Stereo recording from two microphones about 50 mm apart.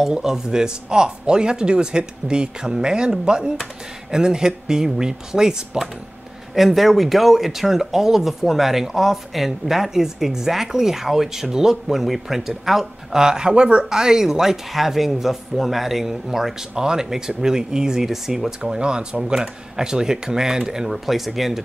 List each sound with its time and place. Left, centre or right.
0.0 s speech: centre